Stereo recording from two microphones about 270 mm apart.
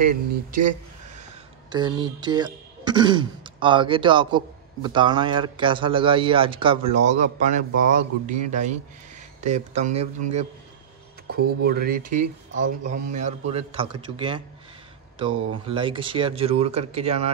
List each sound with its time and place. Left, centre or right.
0.0 s speech: right
1.7 s speech: centre
11.6 s speech: right